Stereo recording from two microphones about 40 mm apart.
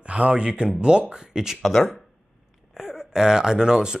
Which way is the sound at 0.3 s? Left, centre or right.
Right.